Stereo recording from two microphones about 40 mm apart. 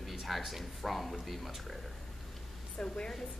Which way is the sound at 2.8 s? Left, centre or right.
Left.